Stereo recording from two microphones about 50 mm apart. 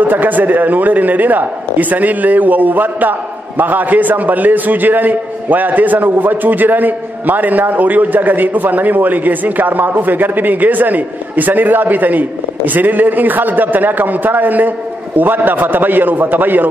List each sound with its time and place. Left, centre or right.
0.0 s a man's voice: right